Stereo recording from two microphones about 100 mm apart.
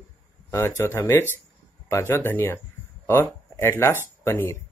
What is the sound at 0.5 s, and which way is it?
Speech, 25° left (ahead or behind).